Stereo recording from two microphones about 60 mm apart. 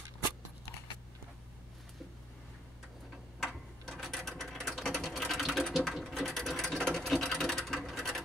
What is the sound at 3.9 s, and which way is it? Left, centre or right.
Ratchet, centre.